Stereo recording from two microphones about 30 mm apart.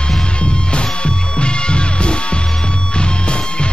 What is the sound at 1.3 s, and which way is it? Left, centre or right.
Music, left.